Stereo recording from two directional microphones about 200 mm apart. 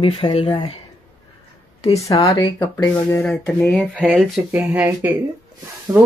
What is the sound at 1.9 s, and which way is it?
Speech, 15° left (ahead or behind).